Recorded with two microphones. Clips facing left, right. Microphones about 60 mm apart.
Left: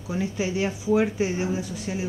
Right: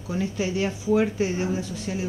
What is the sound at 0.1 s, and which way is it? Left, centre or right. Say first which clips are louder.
Speech: even; centre.